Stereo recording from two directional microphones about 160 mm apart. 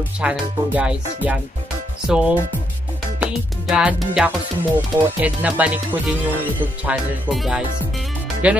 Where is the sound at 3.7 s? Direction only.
5° right (ahead or behind).